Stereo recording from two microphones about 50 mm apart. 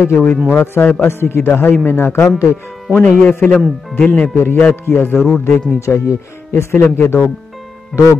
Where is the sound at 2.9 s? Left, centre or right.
Left.